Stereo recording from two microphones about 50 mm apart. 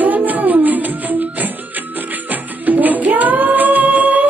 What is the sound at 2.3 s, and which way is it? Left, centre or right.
Music, right.